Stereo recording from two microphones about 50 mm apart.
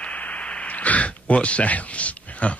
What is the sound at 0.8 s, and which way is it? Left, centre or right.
Speech, left.